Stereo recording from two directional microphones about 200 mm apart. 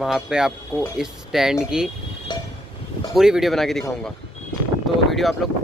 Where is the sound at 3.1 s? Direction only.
Centre (ahead or behind).